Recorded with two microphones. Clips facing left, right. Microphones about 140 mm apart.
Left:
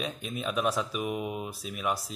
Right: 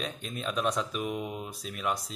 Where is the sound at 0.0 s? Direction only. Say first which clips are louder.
Left 2 dB; 5° left (ahead or behind).